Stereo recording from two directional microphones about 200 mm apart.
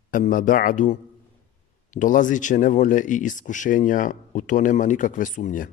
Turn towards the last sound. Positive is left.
turn(degrees=40)  # may be behind; listen again after turning